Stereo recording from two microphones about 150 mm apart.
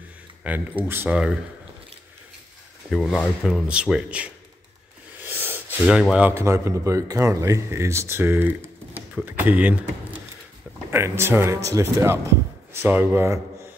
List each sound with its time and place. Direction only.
0.4 s speech: 10° right (ahead or behind)
2.9 s speech: 5° left (ahead or behind); by 13.4 s 15° right (ahead or behind)